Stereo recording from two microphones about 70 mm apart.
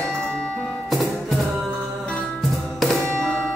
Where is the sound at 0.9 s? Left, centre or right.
Centre.